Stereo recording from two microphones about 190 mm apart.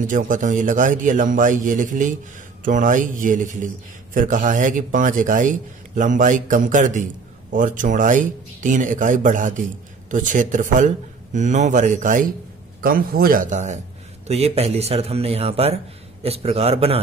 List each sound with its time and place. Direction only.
0.0 s a man's voice: 45° right (ahead or behind)